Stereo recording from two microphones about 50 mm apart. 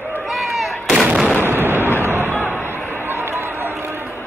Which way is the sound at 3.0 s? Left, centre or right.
Right.